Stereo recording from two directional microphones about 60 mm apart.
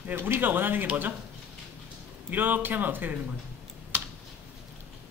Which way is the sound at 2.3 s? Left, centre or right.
Right.